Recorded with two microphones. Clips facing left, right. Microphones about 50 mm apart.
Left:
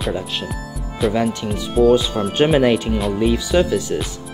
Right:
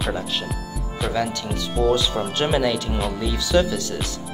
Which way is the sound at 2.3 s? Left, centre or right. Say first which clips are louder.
Left 8 dB; left.